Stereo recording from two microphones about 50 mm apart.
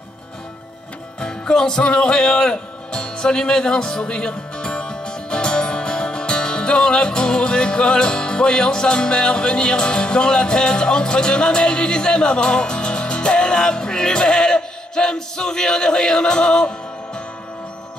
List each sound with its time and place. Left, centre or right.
1.2 s speech: centre